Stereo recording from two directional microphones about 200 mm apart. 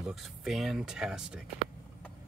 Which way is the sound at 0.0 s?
Centre (ahead or behind).